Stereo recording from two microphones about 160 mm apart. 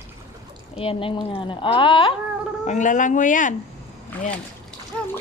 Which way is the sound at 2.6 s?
50° left (ahead or behind).